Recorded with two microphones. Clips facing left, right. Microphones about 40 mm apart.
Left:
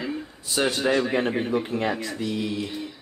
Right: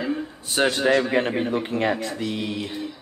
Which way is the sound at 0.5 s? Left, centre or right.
Right.